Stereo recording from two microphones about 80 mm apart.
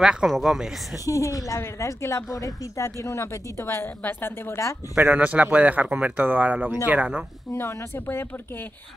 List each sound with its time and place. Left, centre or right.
0.0 s speech: centre
1.0 s a woman's voice: left
4.9 s speech: right
7.5 s speech: left